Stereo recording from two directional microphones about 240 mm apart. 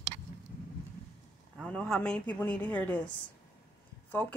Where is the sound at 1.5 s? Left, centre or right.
Centre.